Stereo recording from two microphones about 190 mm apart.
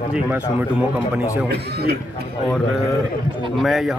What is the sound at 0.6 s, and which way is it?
Speech, 10° right (ahead or behind).